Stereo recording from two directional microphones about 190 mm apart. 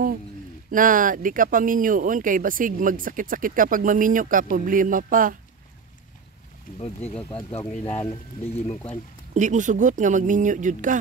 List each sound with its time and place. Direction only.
0.7 s speech: 45° right (ahead or behind)
6.8 s speech: 35° left (ahead or behind)
8.7 s speech: 10° left (ahead or behind)
9.3 s speech: 40° right (ahead or behind)